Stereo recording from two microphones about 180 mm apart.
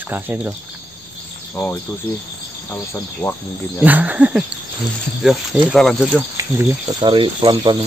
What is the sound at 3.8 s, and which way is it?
Speech, 10° right (ahead or behind).